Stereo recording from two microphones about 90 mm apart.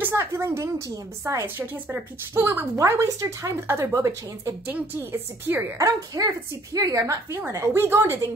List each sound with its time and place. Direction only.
0.0 s a woman's voice: 30° right (ahead or behind)
4.6 s a woman's voice: 20° right (ahead or behind)
5.8 s a woman's voice: 40° right (ahead or behind)